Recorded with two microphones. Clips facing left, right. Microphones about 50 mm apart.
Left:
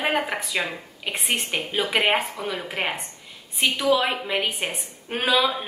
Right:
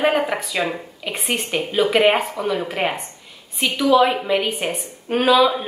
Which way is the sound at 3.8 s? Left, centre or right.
Centre.